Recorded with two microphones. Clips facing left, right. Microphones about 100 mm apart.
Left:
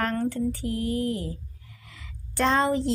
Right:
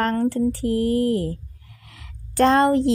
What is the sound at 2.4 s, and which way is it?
Speech, 60° right (ahead or behind).